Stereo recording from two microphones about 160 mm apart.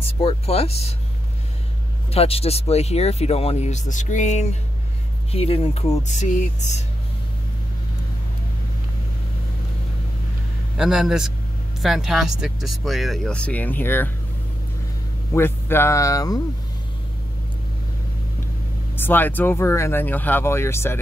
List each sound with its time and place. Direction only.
0.0 s speech: 35° left (ahead or behind)
2.1 s speech: 40° left (ahead or behind)
6.0 s speech: 50° left (ahead or behind)
10.8 s speech: 5° right (ahead or behind); by 14.1 s 15° left (ahead or behind)
15.3 s speech: 15° left (ahead or behind)
18.9 s speech: 10° left (ahead or behind)